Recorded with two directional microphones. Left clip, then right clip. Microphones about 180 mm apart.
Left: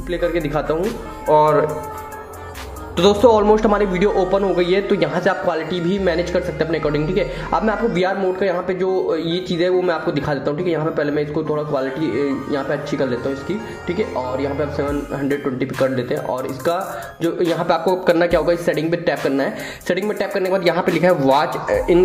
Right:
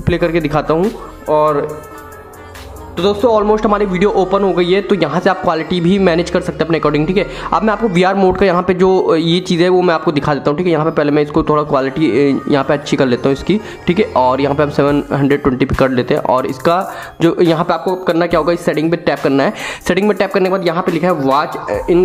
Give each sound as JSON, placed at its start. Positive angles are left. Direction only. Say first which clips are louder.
{"t": 0.1, "sound": "speech", "louder": "right 6 dB", "side_deg": -30}
{"t": 1.3, "sound": "speech", "louder": "right 1 dB", "side_deg": -10}
{"t": 3.0, "sound": "a man's voice", "louder": "right 1 dB", "side_deg": 0}
{"t": 18.0, "sound": "speech", "louder": "right 3 dB", "side_deg": -20}
{"t": 20.4, "sound": "speech", "louder": "right 3 dB", "side_deg": -15}